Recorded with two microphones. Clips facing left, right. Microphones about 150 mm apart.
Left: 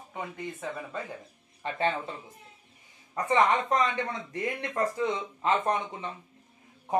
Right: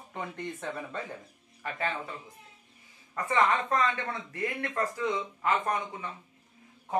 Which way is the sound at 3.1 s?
15° left (ahead or behind).